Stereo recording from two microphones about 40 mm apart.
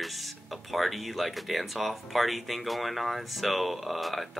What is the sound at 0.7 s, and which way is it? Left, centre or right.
Speech, centre.